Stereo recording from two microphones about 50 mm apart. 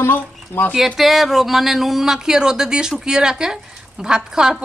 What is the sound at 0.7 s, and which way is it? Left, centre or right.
Speech, centre.